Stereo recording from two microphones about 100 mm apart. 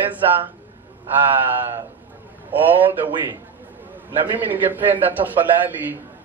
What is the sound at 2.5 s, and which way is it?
A man's voice, 20° right (ahead or behind).